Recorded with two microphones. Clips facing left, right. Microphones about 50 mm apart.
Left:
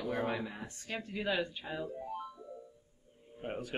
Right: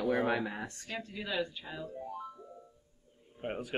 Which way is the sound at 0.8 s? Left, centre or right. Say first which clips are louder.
Left 6 dB; left.